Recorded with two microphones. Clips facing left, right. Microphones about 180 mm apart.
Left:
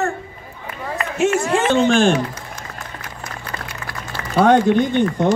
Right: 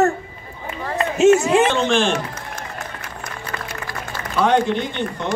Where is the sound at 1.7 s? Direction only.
45° left (ahead or behind).